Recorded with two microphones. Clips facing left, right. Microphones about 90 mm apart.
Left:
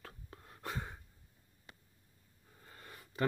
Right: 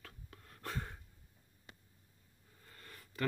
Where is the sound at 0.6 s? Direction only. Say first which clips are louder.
Left 1 dB; 5° left (ahead or behind).